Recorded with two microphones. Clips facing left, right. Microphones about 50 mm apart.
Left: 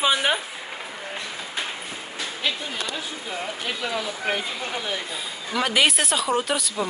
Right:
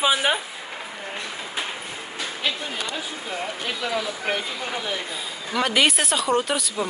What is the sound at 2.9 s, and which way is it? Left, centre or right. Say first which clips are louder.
Speech: right 1 dB; centre.